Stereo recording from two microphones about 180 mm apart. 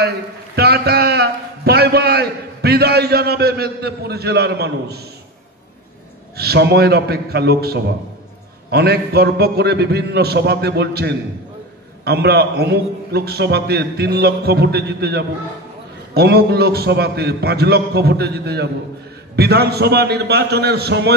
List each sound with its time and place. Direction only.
0.6 s a man's voice: 60° right (ahead or behind)
6.3 s a man's voice: 60° right (ahead or behind)